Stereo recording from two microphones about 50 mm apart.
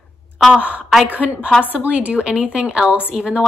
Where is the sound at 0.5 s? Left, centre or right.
Right.